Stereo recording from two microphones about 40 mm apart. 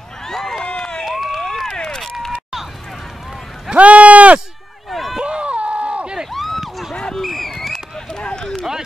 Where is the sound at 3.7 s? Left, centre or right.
Right.